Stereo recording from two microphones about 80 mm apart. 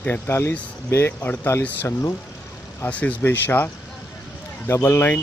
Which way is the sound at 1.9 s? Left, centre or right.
Left.